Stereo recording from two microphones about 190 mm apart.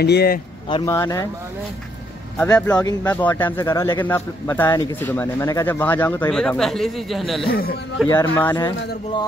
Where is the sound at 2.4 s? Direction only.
10° left (ahead or behind).